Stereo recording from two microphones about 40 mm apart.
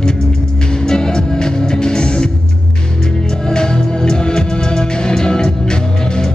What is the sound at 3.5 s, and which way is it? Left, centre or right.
Music, centre.